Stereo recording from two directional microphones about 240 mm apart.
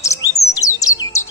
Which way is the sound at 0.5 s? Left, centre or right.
Centre.